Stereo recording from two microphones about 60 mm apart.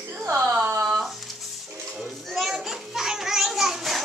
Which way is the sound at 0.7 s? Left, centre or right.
Right.